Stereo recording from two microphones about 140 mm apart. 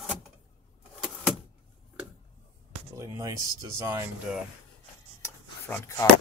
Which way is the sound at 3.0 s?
25° right (ahead or behind).